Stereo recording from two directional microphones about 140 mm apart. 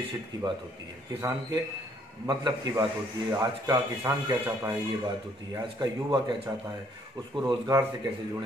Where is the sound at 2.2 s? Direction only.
30° right (ahead or behind).